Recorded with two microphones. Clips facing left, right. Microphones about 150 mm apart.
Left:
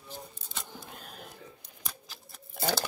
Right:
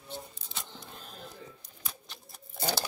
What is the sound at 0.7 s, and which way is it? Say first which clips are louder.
Single-lens reflex camera: left 1 dB; 10° left (ahead or behind).